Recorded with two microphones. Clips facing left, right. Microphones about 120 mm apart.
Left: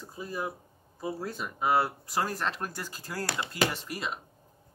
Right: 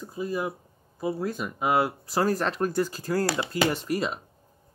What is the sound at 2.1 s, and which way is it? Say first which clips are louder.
Speech: right 6 dB; 35° right (ahead or behind).